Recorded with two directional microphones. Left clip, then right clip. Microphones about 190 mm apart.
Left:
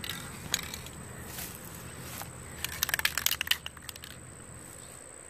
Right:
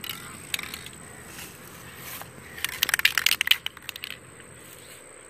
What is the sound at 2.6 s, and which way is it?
Crushing, 5° left (ahead or behind).